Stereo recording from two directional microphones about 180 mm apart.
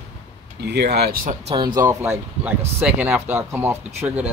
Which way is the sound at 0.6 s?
65° right (ahead or behind).